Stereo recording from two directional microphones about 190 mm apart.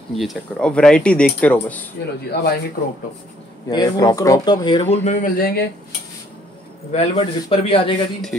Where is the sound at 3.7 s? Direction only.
20° left (ahead or behind).